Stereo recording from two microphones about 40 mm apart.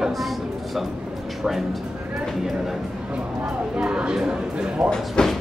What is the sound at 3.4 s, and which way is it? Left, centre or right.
Speech, centre.